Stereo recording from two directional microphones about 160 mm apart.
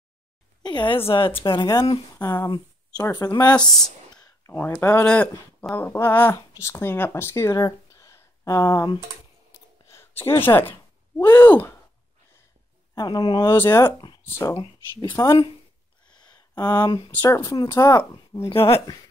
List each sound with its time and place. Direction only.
0.6 s a sound: 25° left (ahead or behind)
1.0 s speech: 35° left (ahead or behind)
2.1 s speech: 15° left (ahead or behind)
4.1 s a sound: 25° left (ahead or behind)
4.6 s speech: 15° left (ahead or behind)
9.8 s a sound: 15° left (ahead or behind)
11.1 s speech: 25° left (ahead or behind)
12.9 s speech: 25° left (ahead or behind)
13.7 s speech: 15° left (ahead or behind)
14.6 s speech: 30° left (ahead or behind)
16.1 s a sound: 25° left (ahead or behind)
17.1 s speech: 15° left (ahead or behind); by 18.9 s 35° left (ahead or behind)